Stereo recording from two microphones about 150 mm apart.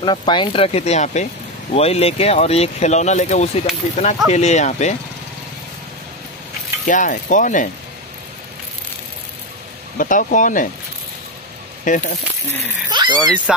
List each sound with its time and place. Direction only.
0.0 s speech: 30° left (ahead or behind); by 4.9 s 50° left (ahead or behind)
6.9 s speech: 60° left (ahead or behind)
9.9 s speech: 60° left (ahead or behind)
11.9 s speech: 60° left (ahead or behind)
12.9 s speech: 30° right (ahead or behind)